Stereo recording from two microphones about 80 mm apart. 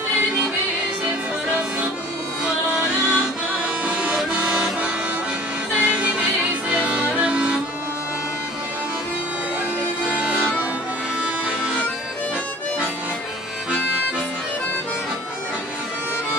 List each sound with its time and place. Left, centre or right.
2.4 s music: centre
3.8 s vehicle: centre
4.2 s accordion: centre
5.8 s music: centre
10.0 s music: centre